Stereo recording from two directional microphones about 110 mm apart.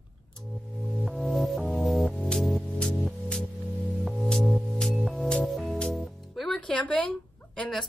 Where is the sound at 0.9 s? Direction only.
5° left (ahead or behind).